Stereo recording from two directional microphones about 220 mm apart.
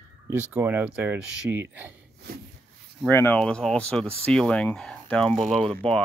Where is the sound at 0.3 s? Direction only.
10° right (ahead or behind).